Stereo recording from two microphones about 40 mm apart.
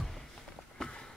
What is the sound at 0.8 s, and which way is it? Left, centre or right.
Run, centre.